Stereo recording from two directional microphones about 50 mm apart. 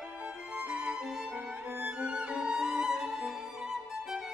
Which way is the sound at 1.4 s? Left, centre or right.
Right.